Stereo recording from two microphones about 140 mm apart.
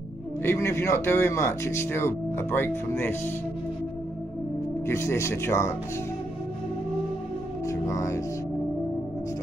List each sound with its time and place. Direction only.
0.4 s speech: 15° left (ahead or behind)
4.8 s speech: 20° left (ahead or behind)
7.6 s speech: 20° left (ahead or behind)